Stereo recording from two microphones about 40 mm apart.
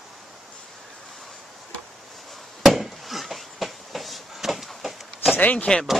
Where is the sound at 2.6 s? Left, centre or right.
Centre.